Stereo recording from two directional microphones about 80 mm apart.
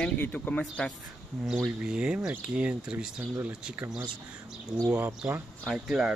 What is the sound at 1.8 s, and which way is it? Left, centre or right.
Speech, centre.